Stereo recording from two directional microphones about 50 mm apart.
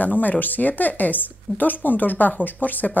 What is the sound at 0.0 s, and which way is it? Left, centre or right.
Speech, left.